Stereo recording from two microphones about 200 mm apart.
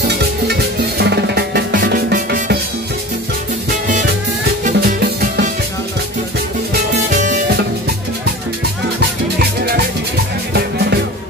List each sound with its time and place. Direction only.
0.5 s music: 55° right (ahead or behind)
4.6 s music: 50° right (ahead or behind)
9.4 s music: 50° right (ahead or behind)